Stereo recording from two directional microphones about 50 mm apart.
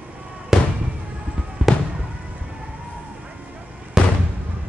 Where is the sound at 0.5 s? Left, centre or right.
Centre.